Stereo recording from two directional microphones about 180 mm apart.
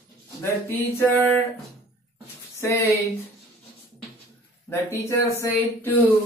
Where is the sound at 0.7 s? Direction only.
10° left (ahead or behind).